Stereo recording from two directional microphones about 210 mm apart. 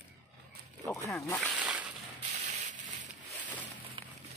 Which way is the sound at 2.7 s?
35° right (ahead or behind).